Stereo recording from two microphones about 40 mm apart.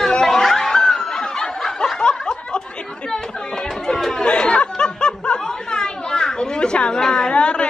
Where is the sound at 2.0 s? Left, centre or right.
Left.